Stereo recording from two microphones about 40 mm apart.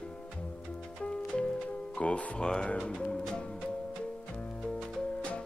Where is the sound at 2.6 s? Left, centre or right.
Left.